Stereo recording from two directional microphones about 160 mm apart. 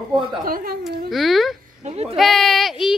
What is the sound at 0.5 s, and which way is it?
Speech, 65° right (ahead or behind).